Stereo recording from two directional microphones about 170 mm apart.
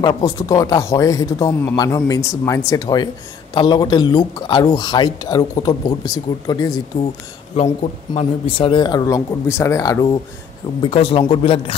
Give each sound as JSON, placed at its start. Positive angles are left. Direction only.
{"t": 0.0, "sound": "speech", "side_deg": 20}
{"t": 8.2, "sound": "speech", "side_deg": 30}
{"t": 10.8, "sound": "speech", "side_deg": 35}